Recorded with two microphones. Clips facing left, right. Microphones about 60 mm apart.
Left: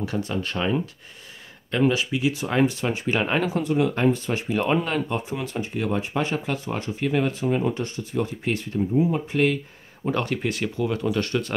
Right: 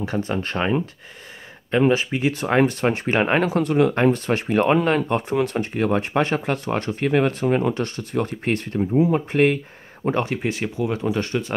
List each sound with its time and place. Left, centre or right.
0.0 s speech: right
10.1 s speech: right